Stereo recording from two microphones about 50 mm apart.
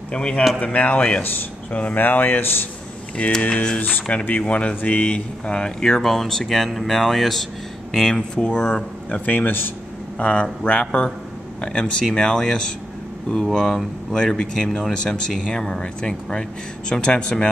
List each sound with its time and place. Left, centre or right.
0.1 s speech: centre; by 2.4 s left
3.2 s speech: left
9.3 s speech: left
10.1 s speech: left